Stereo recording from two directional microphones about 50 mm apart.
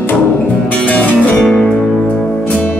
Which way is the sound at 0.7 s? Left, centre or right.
Left.